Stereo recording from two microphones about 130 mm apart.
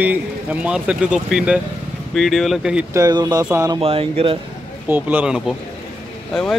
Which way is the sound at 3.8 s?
50° right (ahead or behind).